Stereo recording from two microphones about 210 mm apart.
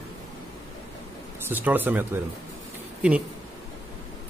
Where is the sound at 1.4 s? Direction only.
10° right (ahead or behind).